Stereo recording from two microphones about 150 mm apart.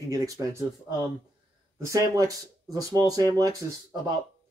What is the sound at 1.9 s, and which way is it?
Speech, 20° right (ahead or behind).